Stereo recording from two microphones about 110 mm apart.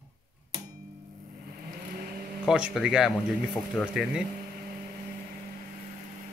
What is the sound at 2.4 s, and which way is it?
Speech, 5° right (ahead or behind).